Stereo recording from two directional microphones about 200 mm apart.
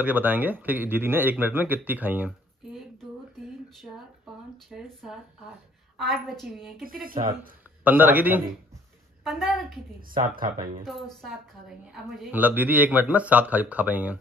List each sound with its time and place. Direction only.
0.0 s a man's voice: 10° right (ahead or behind)
4.6 s a woman's voice: centre (ahead or behind)
10.1 s speech: 45° right (ahead or behind)
10.9 s a woman's voice: centre (ahead or behind)